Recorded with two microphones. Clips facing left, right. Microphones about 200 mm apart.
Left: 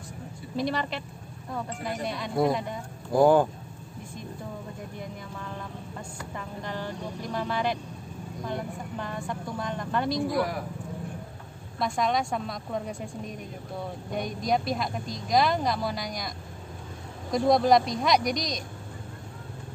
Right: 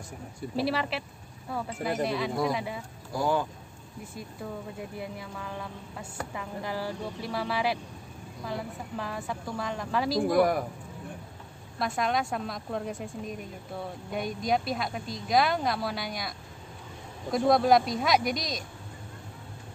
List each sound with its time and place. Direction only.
0.6 s speech: 5° right (ahead or behind)
3.1 s speech: 50° left (ahead or behind)
4.9 s speech: 5° right (ahead or behind)
10.2 s speech: 50° right (ahead or behind)
11.8 s speech: centre (ahead or behind)